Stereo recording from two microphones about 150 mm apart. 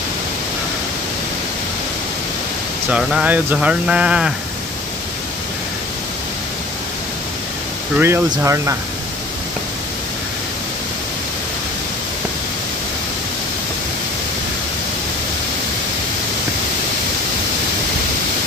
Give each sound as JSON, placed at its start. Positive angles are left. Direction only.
{"t": 2.9, "sound": "speech", "side_deg": -5}
{"t": 8.0, "sound": "speech", "side_deg": -15}